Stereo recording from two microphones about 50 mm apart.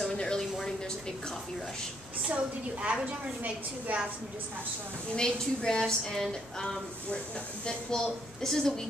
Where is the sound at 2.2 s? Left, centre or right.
Right.